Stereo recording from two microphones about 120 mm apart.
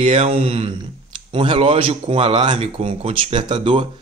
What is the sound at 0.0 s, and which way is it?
Speech, 50° right (ahead or behind).